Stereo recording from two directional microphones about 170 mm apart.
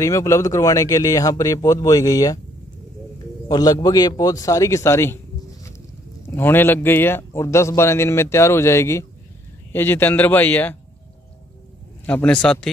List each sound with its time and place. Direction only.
0.0 s speech: 20° left (ahead or behind)
3.4 s a man's voice: 20° left (ahead or behind)
12.1 s a man's voice: 10° left (ahead or behind)